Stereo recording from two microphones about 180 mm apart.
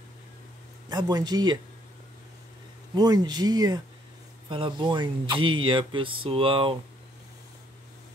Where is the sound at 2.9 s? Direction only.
20° right (ahead or behind).